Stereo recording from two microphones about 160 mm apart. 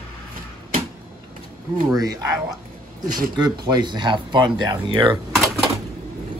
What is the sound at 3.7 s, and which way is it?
Speech, 30° right (ahead or behind).